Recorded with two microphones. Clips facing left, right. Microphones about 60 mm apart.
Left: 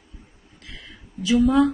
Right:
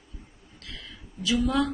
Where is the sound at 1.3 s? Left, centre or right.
Centre.